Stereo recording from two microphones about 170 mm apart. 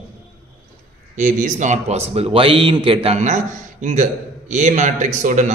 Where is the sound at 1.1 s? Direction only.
45° right (ahead or behind).